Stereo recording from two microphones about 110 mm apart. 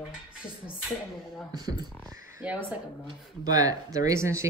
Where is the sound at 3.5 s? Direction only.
35° right (ahead or behind).